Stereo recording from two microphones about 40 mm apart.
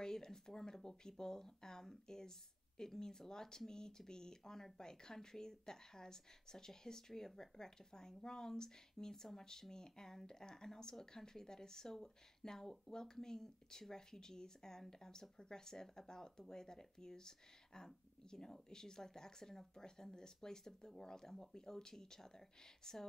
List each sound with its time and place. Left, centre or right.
0.0 s a woman's voice: centre